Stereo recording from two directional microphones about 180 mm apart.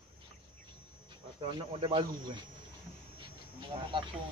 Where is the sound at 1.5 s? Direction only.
30° right (ahead or behind).